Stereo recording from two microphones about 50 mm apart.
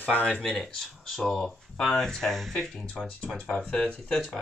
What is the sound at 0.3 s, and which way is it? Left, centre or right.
Speech, centre.